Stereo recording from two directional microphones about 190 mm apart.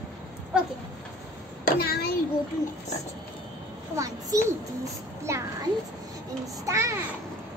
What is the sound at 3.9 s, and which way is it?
A child's voice, 15° right (ahead or behind).